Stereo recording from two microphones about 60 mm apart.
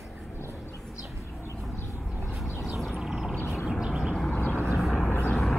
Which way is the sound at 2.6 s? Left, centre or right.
Centre.